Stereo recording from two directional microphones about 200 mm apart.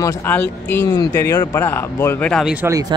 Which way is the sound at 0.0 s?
15° left (ahead or behind).